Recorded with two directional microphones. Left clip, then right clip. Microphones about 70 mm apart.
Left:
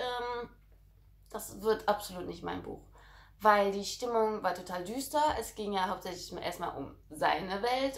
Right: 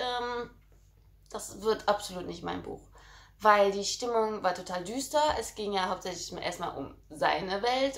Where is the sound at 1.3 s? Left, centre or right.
Centre.